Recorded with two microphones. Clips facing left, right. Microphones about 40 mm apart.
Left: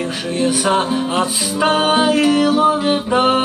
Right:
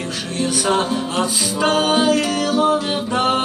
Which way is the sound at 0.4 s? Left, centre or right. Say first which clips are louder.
Left 2 dB; centre.